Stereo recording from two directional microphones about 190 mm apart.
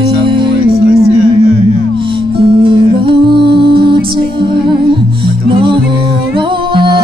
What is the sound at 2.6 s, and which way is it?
Music, 25° right (ahead or behind).